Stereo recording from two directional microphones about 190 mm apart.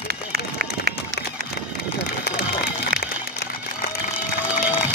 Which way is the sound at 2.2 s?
60° left (ahead or behind).